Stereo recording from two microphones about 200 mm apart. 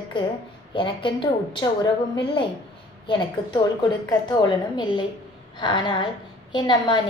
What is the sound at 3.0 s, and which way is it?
A woman's voice, 20° left (ahead or behind).